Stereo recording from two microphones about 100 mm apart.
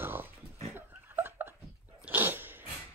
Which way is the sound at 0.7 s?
20° right (ahead or behind).